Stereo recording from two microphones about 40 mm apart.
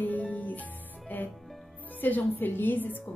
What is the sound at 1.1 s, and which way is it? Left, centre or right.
A woman's voice, left.